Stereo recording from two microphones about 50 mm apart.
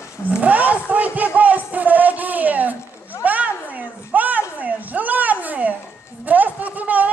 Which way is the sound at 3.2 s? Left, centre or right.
Right.